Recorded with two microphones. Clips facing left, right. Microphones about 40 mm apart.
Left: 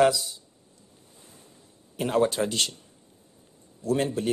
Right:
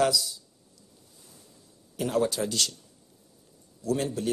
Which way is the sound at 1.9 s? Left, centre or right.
Left.